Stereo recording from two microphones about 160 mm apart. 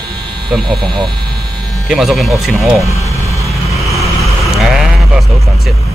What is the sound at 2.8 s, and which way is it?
Vehicle, 20° right (ahead or behind).